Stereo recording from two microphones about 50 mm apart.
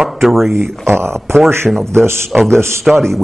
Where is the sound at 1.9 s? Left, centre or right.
Right.